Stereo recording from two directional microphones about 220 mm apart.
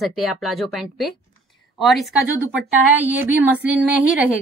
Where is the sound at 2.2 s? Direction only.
5° right (ahead or behind).